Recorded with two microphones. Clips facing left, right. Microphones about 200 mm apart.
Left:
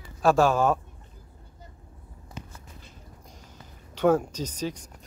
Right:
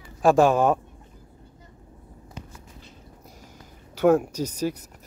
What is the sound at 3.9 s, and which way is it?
Speech, 10° right (ahead or behind).